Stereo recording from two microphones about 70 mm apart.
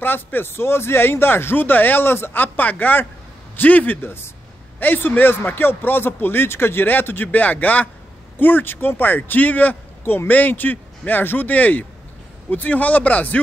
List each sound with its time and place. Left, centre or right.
0.0 s speech: left